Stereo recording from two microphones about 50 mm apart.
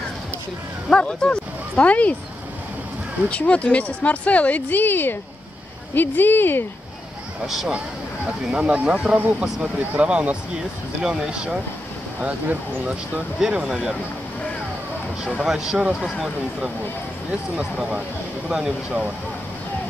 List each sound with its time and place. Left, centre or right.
0.8 s speech: centre
3.3 s a woman's voice: left
7.4 s speech: centre
8.3 s speech: right
11.0 s speech: centre
12.2 s speech: right
13.4 s speech: centre
15.2 s speech: centre
18.5 s speech: centre